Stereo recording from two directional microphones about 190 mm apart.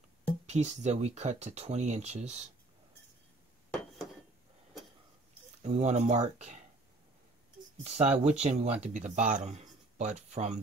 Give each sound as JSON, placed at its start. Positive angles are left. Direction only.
{"t": 0.5, "sound": "speech", "side_deg": -35}
{"t": 5.6, "sound": "speech", "side_deg": -35}
{"t": 7.8, "sound": "speech", "side_deg": -35}